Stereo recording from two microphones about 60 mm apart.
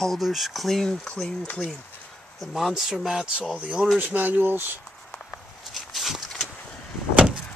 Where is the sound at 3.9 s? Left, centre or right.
Right.